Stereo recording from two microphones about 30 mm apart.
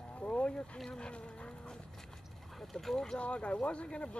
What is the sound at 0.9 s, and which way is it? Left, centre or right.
Speech, left.